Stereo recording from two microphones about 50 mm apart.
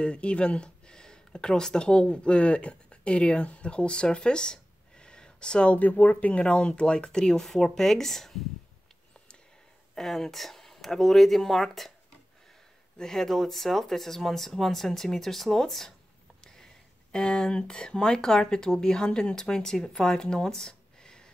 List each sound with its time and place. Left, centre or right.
0.0 s speech: left
5.8 s speech: left; by 8.5 s centre
9.9 s speech: centre
12.9 s speech: centre
17.1 s speech: centre